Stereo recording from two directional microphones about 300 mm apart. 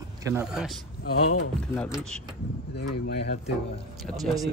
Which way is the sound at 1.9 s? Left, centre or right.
Centre.